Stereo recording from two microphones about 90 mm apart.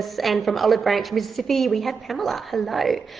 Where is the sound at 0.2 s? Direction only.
Centre (ahead or behind).